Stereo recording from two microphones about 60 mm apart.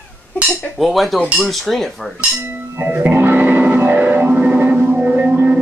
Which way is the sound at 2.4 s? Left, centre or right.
Right.